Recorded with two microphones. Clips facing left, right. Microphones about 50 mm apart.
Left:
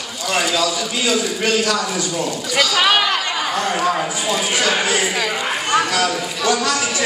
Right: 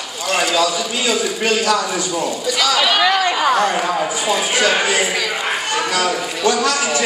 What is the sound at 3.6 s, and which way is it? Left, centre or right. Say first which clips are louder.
Speech: right 1 dB; centre.